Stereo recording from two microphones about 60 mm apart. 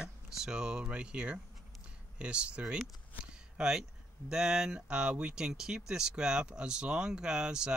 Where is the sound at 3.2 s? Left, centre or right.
Centre.